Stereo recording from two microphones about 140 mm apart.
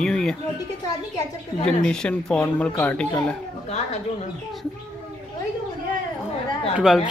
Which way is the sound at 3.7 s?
55° left (ahead or behind).